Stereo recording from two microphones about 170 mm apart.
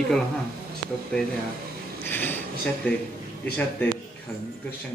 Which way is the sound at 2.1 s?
10° left (ahead or behind).